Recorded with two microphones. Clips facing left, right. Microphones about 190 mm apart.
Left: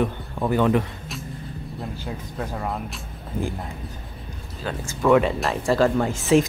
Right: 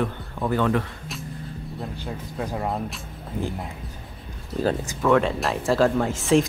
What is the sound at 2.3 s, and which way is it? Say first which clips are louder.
Speech: right 2 dB; 15° right (ahead or behind).